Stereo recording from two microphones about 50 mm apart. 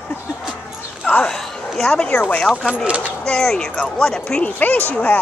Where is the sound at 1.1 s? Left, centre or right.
Left.